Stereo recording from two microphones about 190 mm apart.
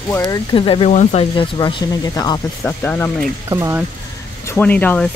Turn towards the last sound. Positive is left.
turn(degrees=5)  # may be behind; listen again after turning